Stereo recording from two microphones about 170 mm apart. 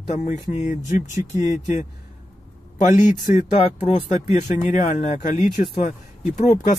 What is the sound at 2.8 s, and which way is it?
Speech, 45° left (ahead or behind).